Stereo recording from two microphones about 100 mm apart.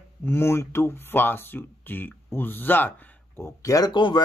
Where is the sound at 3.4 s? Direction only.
35° left (ahead or behind); by 4.2 s 50° left (ahead or behind).